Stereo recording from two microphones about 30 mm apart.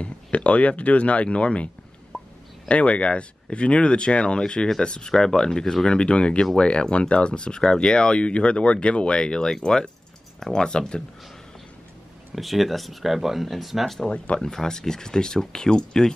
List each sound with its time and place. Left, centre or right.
0.0 s speech: left
2.1 s a sound: centre
2.7 s speech: left
5.9 s speech: left
12.4 s speech: centre
14.0 s speech: left
14.4 s speech: left